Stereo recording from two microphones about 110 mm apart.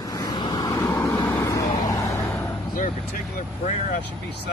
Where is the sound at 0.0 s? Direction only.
35° left (ahead or behind).